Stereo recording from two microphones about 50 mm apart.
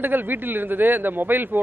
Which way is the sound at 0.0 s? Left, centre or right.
Right.